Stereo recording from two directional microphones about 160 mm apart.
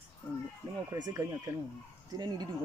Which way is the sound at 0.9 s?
20° right (ahead or behind).